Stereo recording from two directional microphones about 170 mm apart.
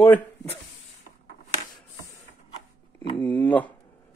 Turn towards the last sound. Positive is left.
turn(degrees=10)  # may be behind; listen again after turning